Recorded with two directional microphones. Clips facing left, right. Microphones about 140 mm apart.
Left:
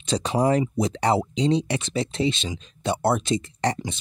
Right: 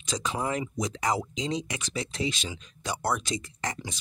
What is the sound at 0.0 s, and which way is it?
Speech, 30° left (ahead or behind).